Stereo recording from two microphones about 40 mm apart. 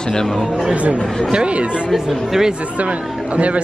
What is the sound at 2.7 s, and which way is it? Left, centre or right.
Speech, right.